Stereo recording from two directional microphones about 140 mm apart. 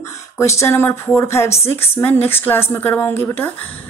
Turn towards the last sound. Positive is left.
turn(degrees=15)  # may be behind; listen again after turning